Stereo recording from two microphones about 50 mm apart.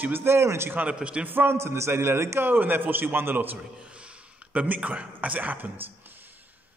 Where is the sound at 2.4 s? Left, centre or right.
Right.